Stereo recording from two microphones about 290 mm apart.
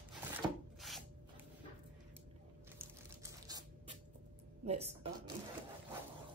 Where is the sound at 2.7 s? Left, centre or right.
Centre.